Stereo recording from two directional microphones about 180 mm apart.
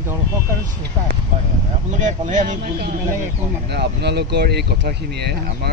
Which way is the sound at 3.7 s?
65° right (ahead or behind).